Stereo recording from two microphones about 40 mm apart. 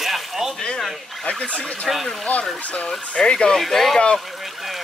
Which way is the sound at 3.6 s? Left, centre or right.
Centre.